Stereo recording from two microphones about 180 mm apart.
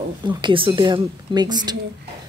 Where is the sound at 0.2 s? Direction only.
25° right (ahead or behind).